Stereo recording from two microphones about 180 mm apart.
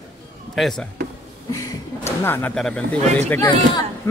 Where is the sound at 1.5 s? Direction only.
15° left (ahead or behind).